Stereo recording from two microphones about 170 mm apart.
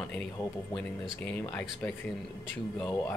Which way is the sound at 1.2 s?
10° left (ahead or behind).